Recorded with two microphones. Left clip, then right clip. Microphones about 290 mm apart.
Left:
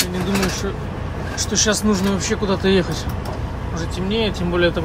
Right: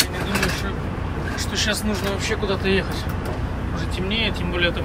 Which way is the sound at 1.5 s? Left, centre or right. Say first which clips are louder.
Left 5 dB; left.